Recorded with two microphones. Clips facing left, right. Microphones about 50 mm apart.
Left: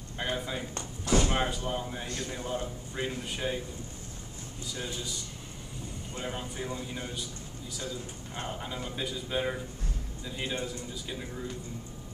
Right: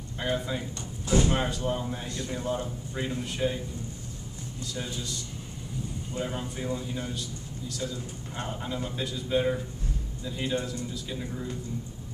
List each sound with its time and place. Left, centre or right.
0.2 s speech: centre
0.7 s a sound: left
1.3 s a man's voice: centre
2.0 s a man's voice: left
2.3 s a man's voice: centre
4.7 s a man's voice: centre